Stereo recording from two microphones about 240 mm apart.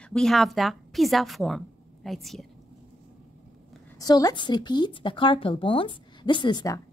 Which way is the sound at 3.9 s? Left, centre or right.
Centre.